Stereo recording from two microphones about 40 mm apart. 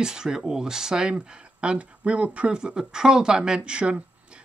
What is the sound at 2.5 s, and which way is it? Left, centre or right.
Speech, right.